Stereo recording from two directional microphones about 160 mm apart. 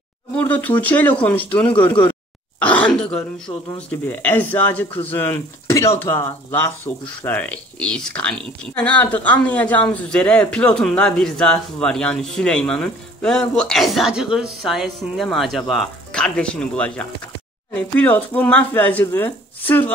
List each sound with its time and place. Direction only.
0.4 s speech: 10° left (ahead or behind)